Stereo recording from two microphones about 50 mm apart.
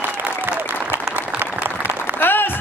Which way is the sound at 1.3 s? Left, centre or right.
Right.